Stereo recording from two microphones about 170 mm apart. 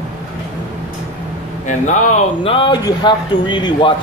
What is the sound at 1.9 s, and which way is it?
A man's voice, 45° left (ahead or behind).